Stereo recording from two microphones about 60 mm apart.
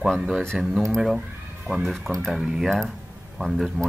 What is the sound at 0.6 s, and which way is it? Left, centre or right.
A man's voice, centre.